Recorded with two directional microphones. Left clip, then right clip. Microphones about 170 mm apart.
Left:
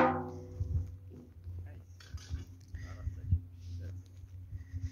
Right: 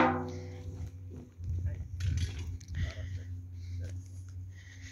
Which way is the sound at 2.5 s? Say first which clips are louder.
Right 8 dB; 15° left (ahead or behind).